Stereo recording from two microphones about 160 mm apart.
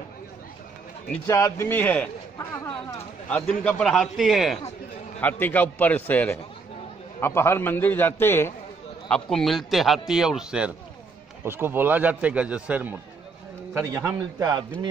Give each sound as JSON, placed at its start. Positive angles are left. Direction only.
{"t": 1.2, "sound": "a man's voice", "side_deg": 15}
{"t": 3.6, "sound": "speech", "side_deg": 5}
{"t": 5.2, "sound": "a man's voice", "side_deg": 10}
{"t": 9.1, "sound": "a man's voice", "side_deg": 0}